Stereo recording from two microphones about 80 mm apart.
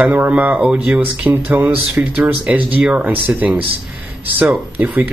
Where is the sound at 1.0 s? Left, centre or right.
Right.